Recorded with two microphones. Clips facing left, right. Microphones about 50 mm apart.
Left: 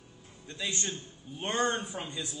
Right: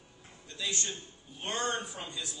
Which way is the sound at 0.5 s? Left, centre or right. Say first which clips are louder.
Left 1 dB; left.